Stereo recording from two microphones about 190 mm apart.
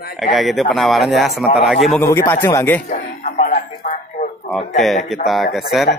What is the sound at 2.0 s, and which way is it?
Speech, 15° left (ahead or behind).